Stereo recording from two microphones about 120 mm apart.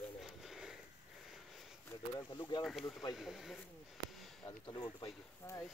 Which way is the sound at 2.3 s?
40° left (ahead or behind).